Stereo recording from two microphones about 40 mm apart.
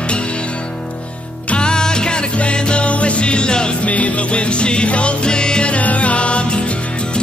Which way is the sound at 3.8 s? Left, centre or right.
Left.